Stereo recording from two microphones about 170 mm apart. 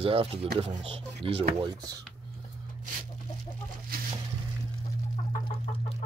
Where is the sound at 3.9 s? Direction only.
60° right (ahead or behind).